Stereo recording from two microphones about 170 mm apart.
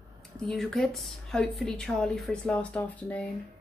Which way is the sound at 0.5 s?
Centre (ahead or behind).